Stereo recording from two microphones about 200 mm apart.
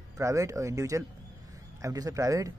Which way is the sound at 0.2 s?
15° right (ahead or behind).